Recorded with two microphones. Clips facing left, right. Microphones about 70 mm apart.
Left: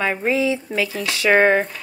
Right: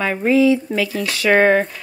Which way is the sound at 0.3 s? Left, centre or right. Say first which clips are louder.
Right 10 dB; left.